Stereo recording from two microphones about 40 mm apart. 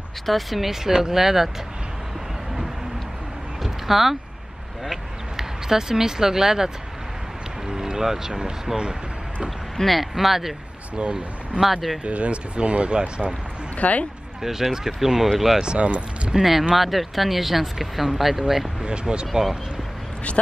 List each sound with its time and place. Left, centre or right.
0.3 s speech: centre
3.6 s vehicle: centre
5.4 s speech: centre
9.8 s speech: centre
11.0 s speech: right
11.6 s speech: centre
12.0 s speech: right
13.7 s speech: left
14.4 s speech: centre
15.6 s speech: right
16.3 s speech: centre
18.8 s speech: right